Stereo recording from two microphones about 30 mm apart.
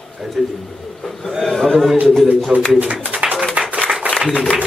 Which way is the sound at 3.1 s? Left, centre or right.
Right.